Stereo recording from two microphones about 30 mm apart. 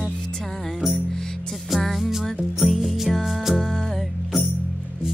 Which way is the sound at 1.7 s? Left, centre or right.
Centre.